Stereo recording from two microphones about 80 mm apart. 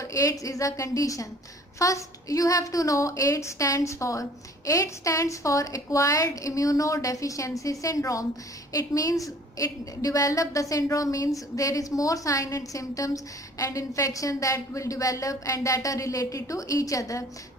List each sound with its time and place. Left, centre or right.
0.0 s a woman's voice: left